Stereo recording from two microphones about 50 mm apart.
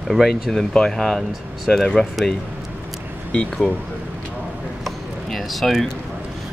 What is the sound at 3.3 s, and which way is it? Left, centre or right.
Speech, left.